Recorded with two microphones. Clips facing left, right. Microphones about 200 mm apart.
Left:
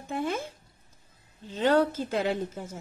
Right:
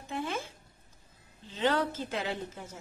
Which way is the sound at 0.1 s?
45° left (ahead or behind).